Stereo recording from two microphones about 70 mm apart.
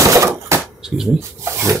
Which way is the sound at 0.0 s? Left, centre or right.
Right.